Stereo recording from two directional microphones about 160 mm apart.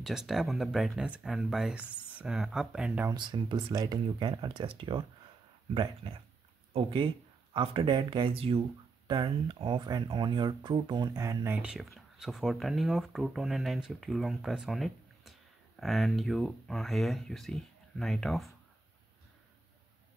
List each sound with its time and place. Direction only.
0.0 s speech: centre (ahead or behind)
3.1 s speech: 30° right (ahead or behind)
6.7 s speech: 30° right (ahead or behind); by 18.5 s centre (ahead or behind)